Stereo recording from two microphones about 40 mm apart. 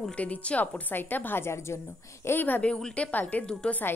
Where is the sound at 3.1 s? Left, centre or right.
Left.